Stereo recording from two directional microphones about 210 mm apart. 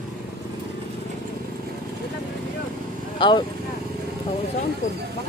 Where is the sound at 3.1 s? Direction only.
20° left (ahead or behind).